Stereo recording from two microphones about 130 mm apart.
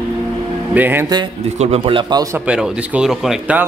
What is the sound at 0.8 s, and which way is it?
Speech, 15° right (ahead or behind).